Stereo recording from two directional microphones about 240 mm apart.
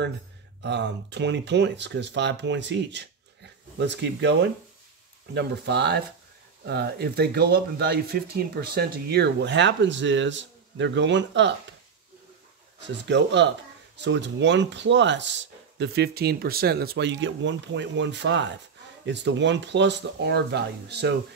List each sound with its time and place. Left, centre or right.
0.6 s speech: right
12.8 s speech: right